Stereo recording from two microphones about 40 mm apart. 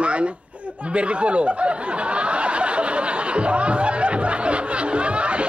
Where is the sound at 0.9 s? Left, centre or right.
Right.